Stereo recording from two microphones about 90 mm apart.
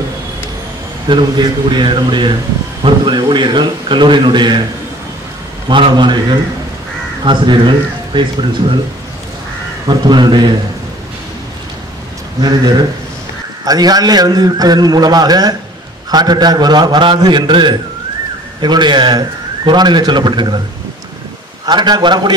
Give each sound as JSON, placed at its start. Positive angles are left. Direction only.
{"t": 1.0, "sound": "a man's voice", "side_deg": -55}
{"t": 5.7, "sound": "a man's voice", "side_deg": -60}
{"t": 9.8, "sound": "a man's voice", "side_deg": -55}
{"t": 12.4, "sound": "a man's voice", "side_deg": -50}
{"t": 21.6, "sound": "a man's voice", "side_deg": -55}